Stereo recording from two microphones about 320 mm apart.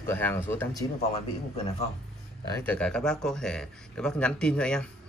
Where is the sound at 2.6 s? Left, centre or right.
Centre.